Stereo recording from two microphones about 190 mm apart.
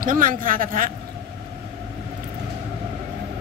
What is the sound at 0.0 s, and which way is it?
Speech, 45° right (ahead or behind).